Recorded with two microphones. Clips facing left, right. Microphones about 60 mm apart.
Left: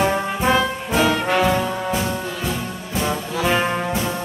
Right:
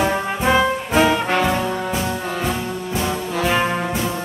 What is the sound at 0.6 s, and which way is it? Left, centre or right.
Brass instrument, centre.